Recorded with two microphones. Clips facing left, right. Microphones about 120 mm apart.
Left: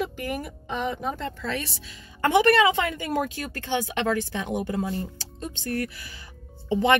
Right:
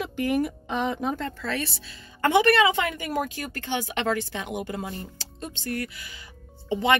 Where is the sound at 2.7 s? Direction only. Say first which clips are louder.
Left 1 dB; 20° left (ahead or behind).